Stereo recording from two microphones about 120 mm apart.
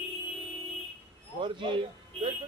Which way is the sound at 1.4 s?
45° right (ahead or behind).